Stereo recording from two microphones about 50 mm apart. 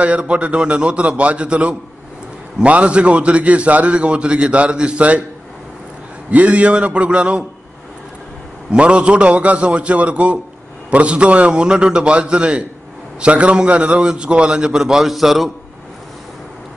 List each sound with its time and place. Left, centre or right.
0.0 s a man's voice: right
6.3 s a man's voice: right
8.7 s a man's voice: right; by 15.5 s centre